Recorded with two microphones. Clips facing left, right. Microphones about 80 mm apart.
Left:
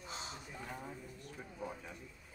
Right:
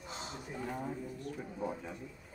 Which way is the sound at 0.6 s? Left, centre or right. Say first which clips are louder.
Right 9 dB; right.